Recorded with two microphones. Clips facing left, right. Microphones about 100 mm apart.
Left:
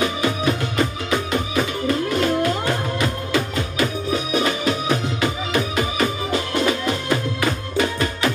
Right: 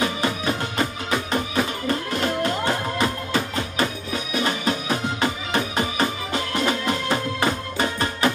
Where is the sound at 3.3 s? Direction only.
35° right (ahead or behind).